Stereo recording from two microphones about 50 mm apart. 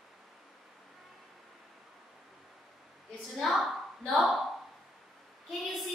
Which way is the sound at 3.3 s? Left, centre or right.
Centre.